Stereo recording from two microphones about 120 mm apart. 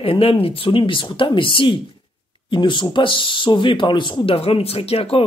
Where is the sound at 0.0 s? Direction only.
50° left (ahead or behind).